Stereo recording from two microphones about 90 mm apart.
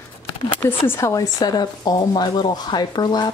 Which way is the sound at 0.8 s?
35° left (ahead or behind).